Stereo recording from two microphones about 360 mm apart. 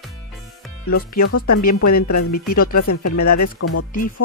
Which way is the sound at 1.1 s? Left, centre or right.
Left.